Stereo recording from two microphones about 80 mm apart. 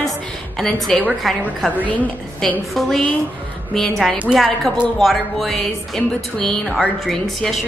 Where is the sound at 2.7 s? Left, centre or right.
Centre.